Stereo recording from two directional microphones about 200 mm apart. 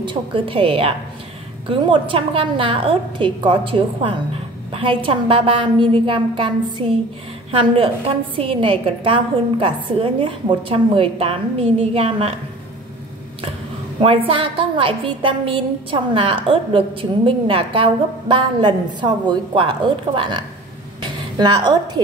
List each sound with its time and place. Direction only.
0.0 s a woman's voice: 25° right (ahead or behind)
13.9 s a woman's voice: 25° right (ahead or behind)